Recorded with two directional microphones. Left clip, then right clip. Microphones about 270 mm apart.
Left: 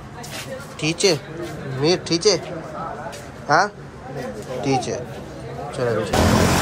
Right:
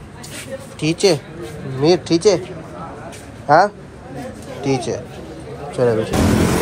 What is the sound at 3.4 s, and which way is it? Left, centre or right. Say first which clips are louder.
Speech: right 5 dB; centre.